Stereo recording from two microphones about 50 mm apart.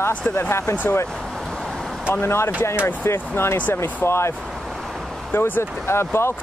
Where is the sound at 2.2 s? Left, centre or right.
Left.